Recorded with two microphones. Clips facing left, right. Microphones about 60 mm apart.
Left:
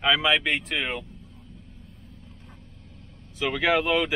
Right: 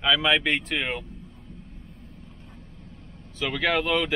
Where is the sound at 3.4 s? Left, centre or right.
Centre.